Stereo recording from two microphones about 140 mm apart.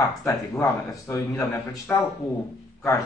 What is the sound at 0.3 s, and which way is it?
A man's voice, 20° left (ahead or behind).